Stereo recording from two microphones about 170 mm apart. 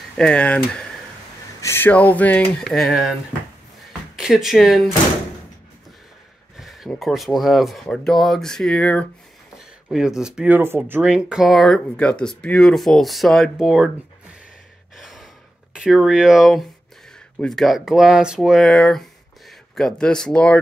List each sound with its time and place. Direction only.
0.2 s speech: 5° left (ahead or behind)
4.2 s speech: 5° right (ahead or behind)
6.6 s speech: centre (ahead or behind)
9.8 s speech: 5° right (ahead or behind)
15.0 s gasp: centre (ahead or behind)
15.7 s speech: centre (ahead or behind)